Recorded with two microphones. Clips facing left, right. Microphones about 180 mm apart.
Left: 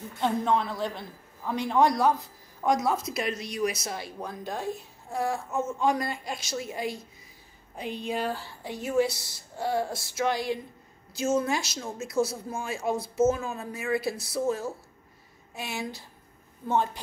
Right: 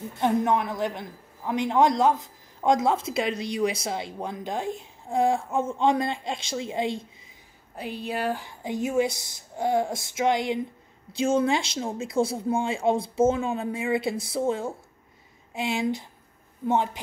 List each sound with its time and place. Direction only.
0.2 s a man's voice: 15° right (ahead or behind)
7.7 s a man's voice: 5° right (ahead or behind)